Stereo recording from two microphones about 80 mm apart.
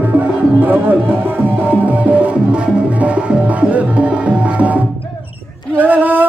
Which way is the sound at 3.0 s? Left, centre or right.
Centre.